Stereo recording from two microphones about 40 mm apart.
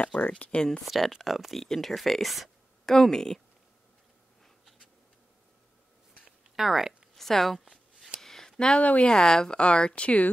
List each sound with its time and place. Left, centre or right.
0.5 s speech: left
0.8 s speech: centre
2.8 s speech: centre
6.5 s speech: centre
7.2 s a woman's voice: centre
8.2 s a sound: centre
9.0 s speech: centre; by 10.3 s left